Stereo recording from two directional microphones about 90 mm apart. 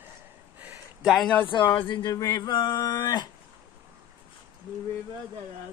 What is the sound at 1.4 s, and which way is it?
Speech, 65° left (ahead or behind).